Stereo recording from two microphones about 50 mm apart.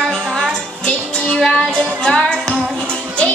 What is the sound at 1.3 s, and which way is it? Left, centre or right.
Music, centre.